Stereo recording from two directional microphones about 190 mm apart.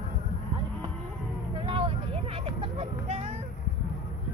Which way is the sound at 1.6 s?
25° right (ahead or behind).